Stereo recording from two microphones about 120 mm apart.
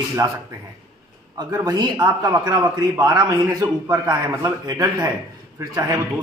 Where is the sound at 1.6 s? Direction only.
40° right (ahead or behind).